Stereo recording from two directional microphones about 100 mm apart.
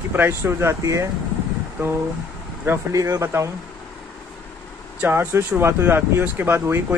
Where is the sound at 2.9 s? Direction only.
35° right (ahead or behind).